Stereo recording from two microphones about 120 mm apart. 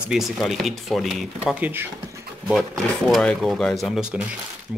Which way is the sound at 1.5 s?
15° right (ahead or behind).